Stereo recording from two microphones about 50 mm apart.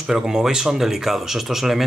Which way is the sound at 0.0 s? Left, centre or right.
Centre.